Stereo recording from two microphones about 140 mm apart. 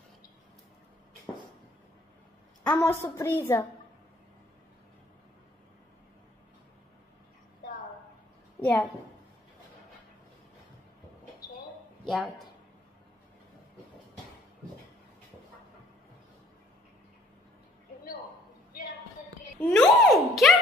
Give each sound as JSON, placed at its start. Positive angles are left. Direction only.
{"t": 2.6, "sound": "a woman's voice", "side_deg": 15}
{"t": 8.6, "sound": "a woman's voice", "side_deg": 10}
{"t": 19.6, "sound": "a sound", "side_deg": 5}